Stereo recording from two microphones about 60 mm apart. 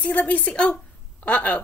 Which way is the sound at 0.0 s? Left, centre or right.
Left.